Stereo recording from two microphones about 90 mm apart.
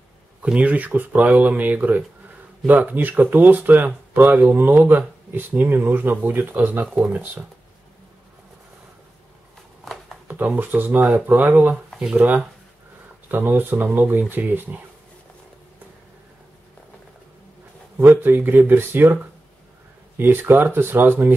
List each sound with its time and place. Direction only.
0.4 s speech: 15° right (ahead or behind)
10.2 s speech: 20° right (ahead or behind)
11.9 s speech: 10° right (ahead or behind)
13.3 s speech: 20° right (ahead or behind)
17.9 s speech: 20° right (ahead or behind)
20.2 s speech: 25° right (ahead or behind)